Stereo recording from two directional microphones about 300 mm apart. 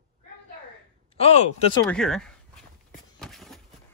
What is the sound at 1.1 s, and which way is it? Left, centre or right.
Speech, centre.